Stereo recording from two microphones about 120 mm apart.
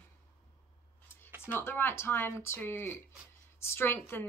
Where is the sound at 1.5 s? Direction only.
20° left (ahead or behind).